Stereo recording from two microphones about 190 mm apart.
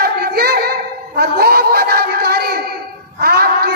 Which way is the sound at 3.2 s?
55° right (ahead or behind).